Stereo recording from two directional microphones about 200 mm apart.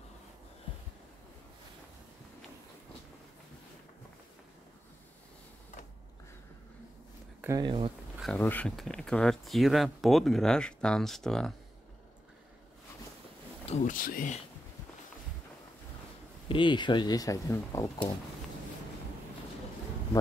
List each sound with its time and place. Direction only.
7.4 s speech: 20° right (ahead or behind)
8.2 s speech: 5° left (ahead or behind)
13.7 s speech: 40° left (ahead or behind)
16.4 s speech: 25° left (ahead or behind)